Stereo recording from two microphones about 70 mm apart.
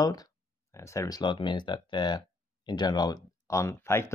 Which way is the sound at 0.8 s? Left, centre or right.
Left.